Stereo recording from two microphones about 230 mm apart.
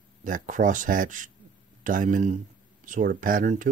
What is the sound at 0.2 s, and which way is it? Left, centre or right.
Speech, right.